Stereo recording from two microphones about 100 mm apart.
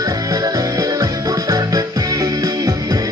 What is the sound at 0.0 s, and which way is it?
Music, 35° right (ahead or behind).